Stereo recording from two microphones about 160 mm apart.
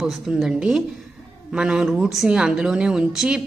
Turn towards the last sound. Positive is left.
turn(degrees=-5)  # may be behind; listen again after turning